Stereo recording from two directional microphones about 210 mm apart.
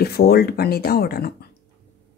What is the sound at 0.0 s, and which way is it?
Speech, 50° left (ahead or behind).